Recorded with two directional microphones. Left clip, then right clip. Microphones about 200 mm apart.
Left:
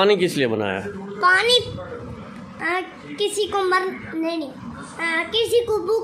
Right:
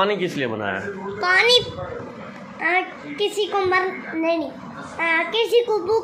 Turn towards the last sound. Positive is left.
turn(degrees=20)  # may be behind; listen again after turning